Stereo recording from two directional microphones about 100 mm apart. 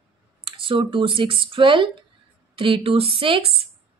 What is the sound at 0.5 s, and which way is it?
A woman's voice, 55° right (ahead or behind).